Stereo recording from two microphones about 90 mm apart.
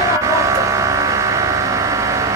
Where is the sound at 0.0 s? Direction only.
35° right (ahead or behind).